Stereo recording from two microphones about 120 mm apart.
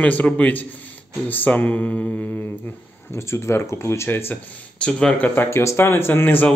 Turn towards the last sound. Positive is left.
turn(degrees=15)  # may be behind; listen again after turning